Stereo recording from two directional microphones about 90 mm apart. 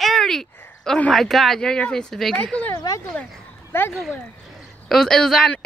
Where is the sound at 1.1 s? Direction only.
Centre (ahead or behind).